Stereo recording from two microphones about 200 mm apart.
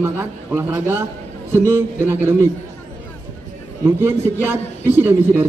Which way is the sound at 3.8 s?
10° right (ahead or behind).